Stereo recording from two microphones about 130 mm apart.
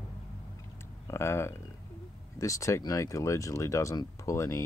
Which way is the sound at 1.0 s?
20° left (ahead or behind).